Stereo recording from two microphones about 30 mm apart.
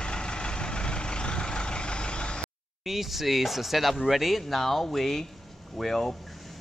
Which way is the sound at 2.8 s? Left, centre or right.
Centre.